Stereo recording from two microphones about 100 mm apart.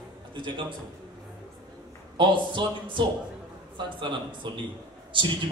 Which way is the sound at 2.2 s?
55° right (ahead or behind).